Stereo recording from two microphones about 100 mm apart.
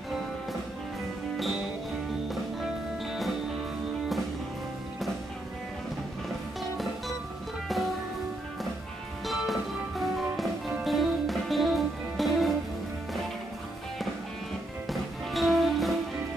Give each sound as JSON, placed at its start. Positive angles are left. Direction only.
{"t": 2.3, "sound": "music", "side_deg": 0}
{"t": 7.6, "sound": "music", "side_deg": 0}
{"t": 9.2, "sound": "music", "side_deg": 0}
{"t": 14.9, "sound": "music", "side_deg": 0}